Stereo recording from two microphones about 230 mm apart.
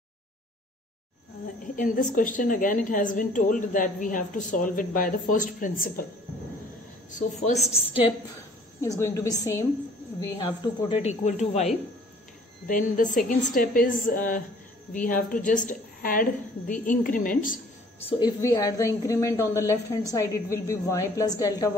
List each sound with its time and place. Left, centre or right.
1.8 s a woman's voice: left
7.2 s speech: left
8.8 s a woman's voice: centre; by 17.6 s left
18.0 s a woman's voice: centre